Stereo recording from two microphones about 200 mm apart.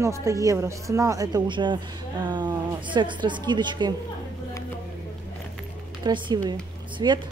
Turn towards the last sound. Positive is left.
turn(degrees=-20)  # may be behind; listen again after turning